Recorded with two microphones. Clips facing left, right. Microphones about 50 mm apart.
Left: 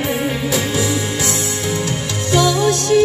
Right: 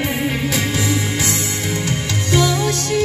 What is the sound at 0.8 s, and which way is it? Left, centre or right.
Music, right.